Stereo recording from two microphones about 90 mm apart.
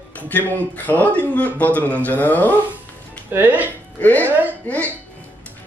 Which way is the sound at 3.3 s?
20° right (ahead or behind).